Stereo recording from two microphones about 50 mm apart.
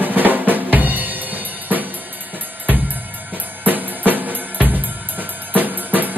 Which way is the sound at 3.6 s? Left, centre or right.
Right.